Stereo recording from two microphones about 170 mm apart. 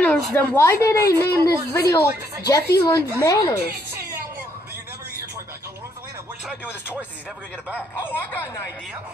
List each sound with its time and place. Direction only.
0.0 s a woman's voice: 10° left (ahead or behind)
8.0 s a woman's voice: 10° left (ahead or behind)